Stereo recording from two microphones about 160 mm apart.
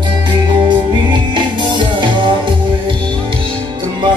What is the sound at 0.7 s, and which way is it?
Music, 30° right (ahead or behind).